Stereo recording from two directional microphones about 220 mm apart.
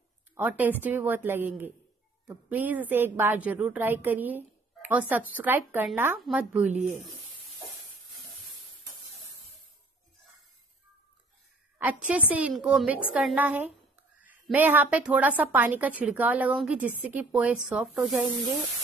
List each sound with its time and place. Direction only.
0.3 s a woman's voice: 5° right (ahead or behind)
6.7 s rub: 35° right (ahead or behind)
12.3 s a woman's voice: 5° right (ahead or behind)